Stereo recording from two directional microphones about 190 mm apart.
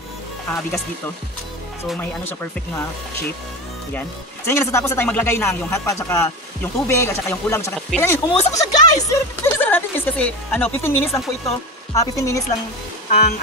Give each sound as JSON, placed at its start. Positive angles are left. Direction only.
{"t": 0.5, "sound": "speech", "side_deg": 10}
{"t": 4.5, "sound": "speech", "side_deg": 15}